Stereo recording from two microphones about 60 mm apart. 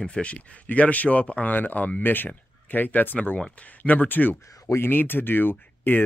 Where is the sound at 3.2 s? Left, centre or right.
Centre.